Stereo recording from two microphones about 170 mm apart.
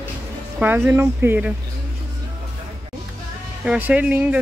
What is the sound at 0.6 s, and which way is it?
Speech, 10° right (ahead or behind).